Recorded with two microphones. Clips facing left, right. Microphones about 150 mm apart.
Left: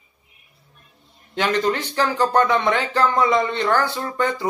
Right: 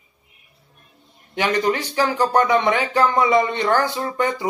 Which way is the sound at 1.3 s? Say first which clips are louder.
Right 1 dB; 15° right (ahead or behind).